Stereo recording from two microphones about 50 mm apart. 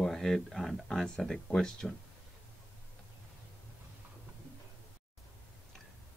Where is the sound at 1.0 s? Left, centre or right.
Centre.